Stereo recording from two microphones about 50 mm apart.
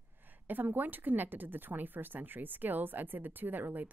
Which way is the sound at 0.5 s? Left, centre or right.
Right.